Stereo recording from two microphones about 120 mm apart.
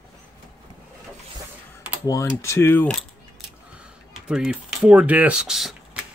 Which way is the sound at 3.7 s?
5° right (ahead or behind).